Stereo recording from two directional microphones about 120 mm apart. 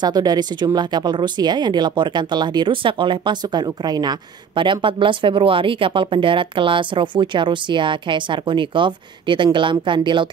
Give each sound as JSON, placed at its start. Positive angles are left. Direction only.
{"t": 0.0, "sound": "speech", "side_deg": -35}